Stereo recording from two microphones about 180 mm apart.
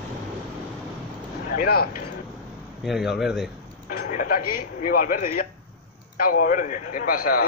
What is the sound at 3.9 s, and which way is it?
Speech, 50° left (ahead or behind).